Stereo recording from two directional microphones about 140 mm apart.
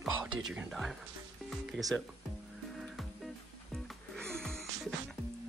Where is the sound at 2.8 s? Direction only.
Centre (ahead or behind).